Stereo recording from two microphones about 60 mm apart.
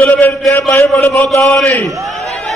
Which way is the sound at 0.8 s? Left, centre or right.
Left.